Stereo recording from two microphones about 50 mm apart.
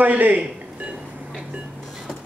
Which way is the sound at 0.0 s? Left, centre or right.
Right.